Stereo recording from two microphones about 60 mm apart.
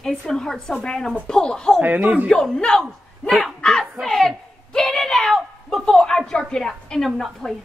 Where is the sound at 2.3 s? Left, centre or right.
Centre.